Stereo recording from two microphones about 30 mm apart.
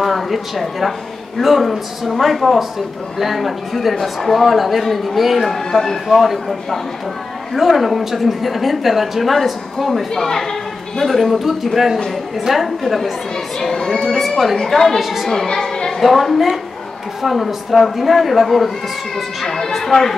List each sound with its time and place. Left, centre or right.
0.0 s a woman's voice: centre
7.5 s a woman's voice: centre
10.1 s speech: centre
11.1 s a woman's voice: centre
13.6 s speech: centre
14.1 s a sound: centre
14.6 s speech: centre
15.0 s a woman's voice: centre
15.2 s a woman's voice: centre
16.0 s a woman's voice: centre